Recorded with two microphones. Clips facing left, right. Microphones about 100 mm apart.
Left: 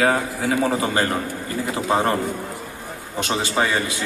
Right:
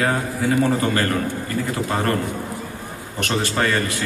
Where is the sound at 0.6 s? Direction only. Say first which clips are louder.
Right 1 dB; 15° left (ahead or behind).